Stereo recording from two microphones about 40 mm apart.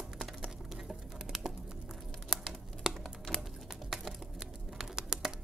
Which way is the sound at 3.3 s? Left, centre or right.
Left.